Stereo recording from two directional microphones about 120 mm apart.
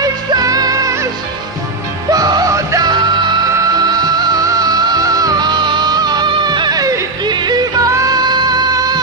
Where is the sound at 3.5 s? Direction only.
30° right (ahead or behind).